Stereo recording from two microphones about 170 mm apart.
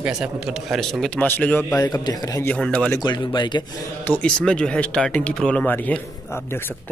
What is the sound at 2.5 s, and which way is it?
Speech, 5° left (ahead or behind).